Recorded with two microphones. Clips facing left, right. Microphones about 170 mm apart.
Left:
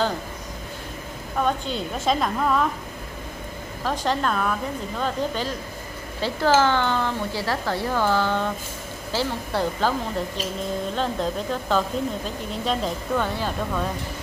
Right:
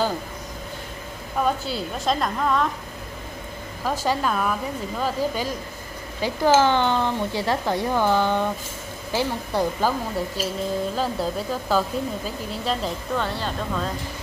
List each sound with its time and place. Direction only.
1.4 s a woman's voice: 5° right (ahead or behind)
3.8 s a woman's voice: 5° right (ahead or behind)
13.2 s speech: 10° left (ahead or behind)